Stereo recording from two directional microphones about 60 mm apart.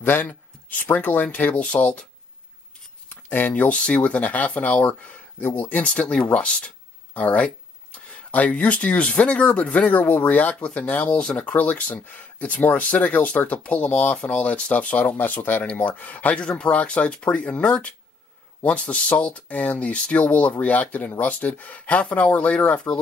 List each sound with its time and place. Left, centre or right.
0.0 s a sound: left
0.9 s speech: left
3.1 s speech: left
9.8 s speech: left
15.6 s speech: left